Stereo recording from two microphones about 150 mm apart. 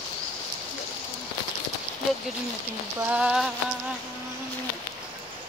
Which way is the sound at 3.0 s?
10° right (ahead or behind).